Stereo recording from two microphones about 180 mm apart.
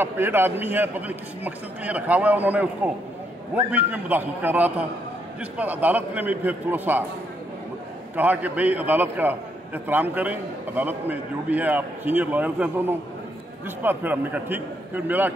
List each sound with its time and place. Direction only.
0.0 s a man's voice: 10° right (ahead or behind)
3.7 s a man's voice: 10° right (ahead or behind)
8.2 s a man's voice: 10° right (ahead or behind)